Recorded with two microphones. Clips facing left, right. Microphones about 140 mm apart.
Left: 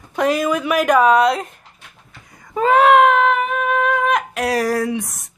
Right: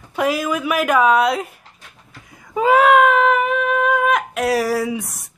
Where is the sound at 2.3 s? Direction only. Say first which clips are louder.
Even; 5° right (ahead or behind).